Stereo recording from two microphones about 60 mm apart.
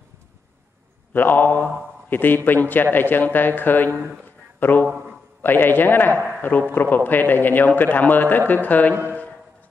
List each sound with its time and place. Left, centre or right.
1.1 s a man's voice: left